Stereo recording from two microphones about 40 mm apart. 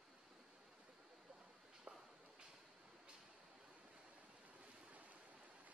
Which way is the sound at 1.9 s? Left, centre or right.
Right.